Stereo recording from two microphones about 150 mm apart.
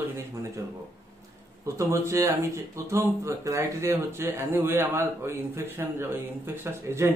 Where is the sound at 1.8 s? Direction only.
20° right (ahead or behind).